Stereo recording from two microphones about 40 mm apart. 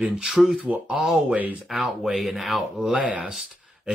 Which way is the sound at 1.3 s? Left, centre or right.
Right.